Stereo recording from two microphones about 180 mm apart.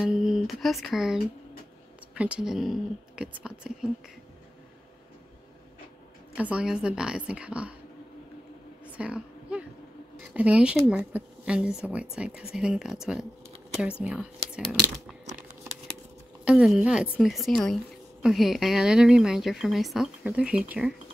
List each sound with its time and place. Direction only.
0.0 s speech: centre (ahead or behind)
6.3 s a woman's voice: 5° right (ahead or behind)
8.8 s a sound: 5° right (ahead or behind)
10.1 s speech: 5° right (ahead or behind)
16.4 s speech: 5° right (ahead or behind)